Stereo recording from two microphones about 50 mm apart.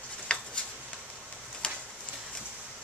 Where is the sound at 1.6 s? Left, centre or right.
Centre.